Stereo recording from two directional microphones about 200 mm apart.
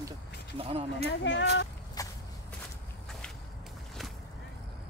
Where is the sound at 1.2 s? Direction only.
65° left (ahead or behind).